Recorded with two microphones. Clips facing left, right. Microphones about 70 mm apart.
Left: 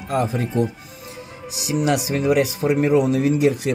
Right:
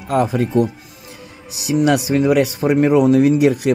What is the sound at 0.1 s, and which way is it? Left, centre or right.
Speech, right.